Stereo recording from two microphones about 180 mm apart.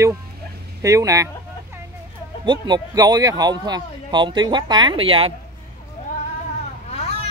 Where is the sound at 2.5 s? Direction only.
25° right (ahead or behind).